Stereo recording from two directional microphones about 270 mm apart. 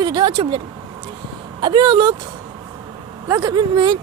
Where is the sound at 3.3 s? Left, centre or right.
Centre.